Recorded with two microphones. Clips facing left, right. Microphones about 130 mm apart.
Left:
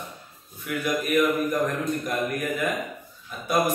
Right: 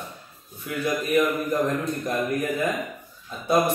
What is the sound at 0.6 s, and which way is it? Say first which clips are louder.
Speech: even; 30° right (ahead or behind).